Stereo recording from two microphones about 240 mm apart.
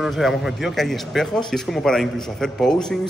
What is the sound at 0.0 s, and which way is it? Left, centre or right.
A man's voice, centre.